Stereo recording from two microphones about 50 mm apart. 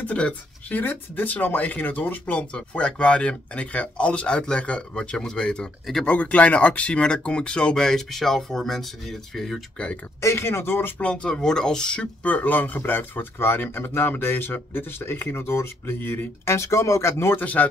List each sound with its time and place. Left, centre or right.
0.0 s speech: left
2.5 s speech: left
6.0 s speech: left; by 9.6 s centre
10.2 s speech: left
11.0 s speech: centre
12.2 s speech: left
16.4 s speech: left
17.4 s speech: left